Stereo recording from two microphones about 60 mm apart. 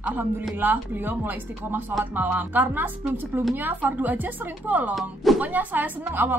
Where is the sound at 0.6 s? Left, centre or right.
Right.